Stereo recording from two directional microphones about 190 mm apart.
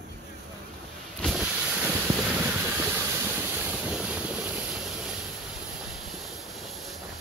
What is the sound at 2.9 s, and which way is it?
Vehicle, 10° right (ahead or behind).